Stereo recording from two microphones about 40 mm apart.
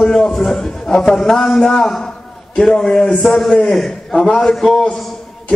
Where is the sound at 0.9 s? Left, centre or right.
Centre.